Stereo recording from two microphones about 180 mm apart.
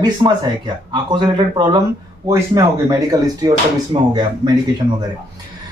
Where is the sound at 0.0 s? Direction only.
25° right (ahead or behind).